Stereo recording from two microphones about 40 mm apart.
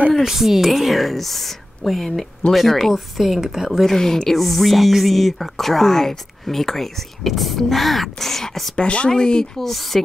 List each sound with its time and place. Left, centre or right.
0.2 s speech: centre
2.9 s speech: centre
3.8 s speech: centre
8.7 s speech: left
9.6 s speech: centre